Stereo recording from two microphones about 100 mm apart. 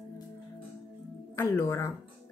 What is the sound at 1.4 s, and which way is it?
Speech, 30° left (ahead or behind).